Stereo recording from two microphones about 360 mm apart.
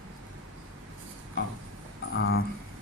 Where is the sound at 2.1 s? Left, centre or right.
Left.